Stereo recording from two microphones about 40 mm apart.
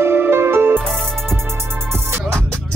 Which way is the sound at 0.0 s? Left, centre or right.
Right.